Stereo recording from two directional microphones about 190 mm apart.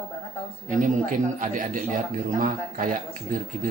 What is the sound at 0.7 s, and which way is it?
A man's voice, 40° right (ahead or behind).